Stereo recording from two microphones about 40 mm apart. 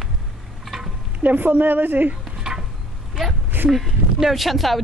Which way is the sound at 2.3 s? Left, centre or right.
Centre.